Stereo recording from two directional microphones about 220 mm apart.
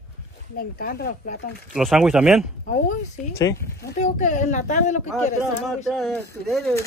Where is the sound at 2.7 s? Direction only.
35° left (ahead or behind).